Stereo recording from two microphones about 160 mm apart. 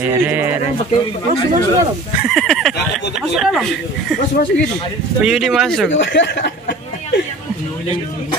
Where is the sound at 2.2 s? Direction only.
Centre (ahead or behind).